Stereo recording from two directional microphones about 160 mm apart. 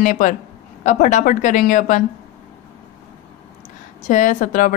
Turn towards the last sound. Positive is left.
turn(degrees=50)  # may be behind; listen again after turning